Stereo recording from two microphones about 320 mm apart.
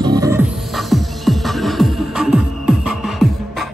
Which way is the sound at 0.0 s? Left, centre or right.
Centre.